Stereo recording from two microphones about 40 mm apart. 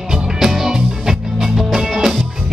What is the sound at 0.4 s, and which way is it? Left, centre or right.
Music, centre.